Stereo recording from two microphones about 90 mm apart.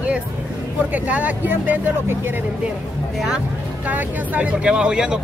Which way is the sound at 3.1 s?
10° right (ahead or behind).